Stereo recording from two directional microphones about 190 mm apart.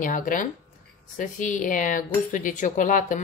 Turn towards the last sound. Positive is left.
turn(degrees=45)  # may be behind; listen again after turning